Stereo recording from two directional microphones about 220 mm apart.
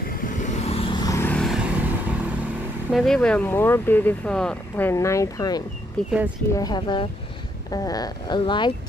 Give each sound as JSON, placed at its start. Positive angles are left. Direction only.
{"t": 0.3, "sound": "vehicle", "side_deg": 35}
{"t": 2.9, "sound": "speech", "side_deg": 0}
{"t": 6.0, "sound": "speech", "side_deg": 5}
{"t": 6.5, "sound": "speech", "side_deg": 20}